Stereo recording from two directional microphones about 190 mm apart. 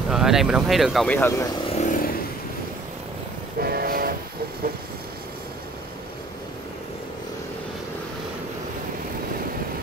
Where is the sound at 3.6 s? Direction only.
50° right (ahead or behind).